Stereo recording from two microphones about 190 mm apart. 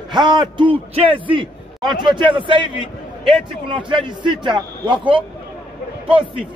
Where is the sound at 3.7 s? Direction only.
25° right (ahead or behind).